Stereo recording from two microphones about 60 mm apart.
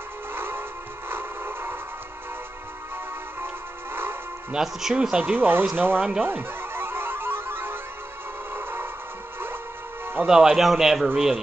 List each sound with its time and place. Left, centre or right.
0.3 s music: right
3.9 s music: right
4.5 s a man's voice: centre
5.2 s speech: right
6.2 s music: right
10.2 s a man's voice: centre